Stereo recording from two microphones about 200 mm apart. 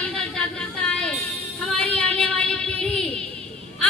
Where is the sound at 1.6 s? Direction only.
5° left (ahead or behind).